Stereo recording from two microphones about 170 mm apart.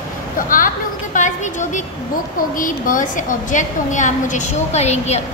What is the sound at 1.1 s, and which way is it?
A woman's voice, 45° left (ahead or behind).